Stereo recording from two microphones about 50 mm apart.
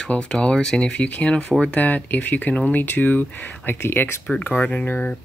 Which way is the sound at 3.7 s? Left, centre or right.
Left.